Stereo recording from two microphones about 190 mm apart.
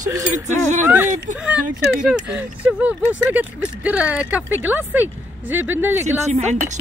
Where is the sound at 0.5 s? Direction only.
40° right (ahead or behind).